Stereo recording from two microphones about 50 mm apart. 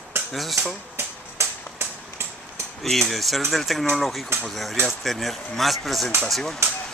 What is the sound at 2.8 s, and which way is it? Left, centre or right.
A woman's voice, centre.